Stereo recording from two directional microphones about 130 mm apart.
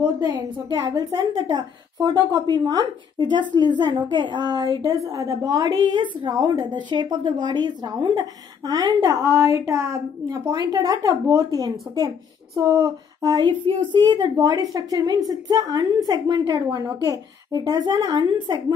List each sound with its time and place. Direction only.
0.2 s a woman's voice: 30° right (ahead or behind)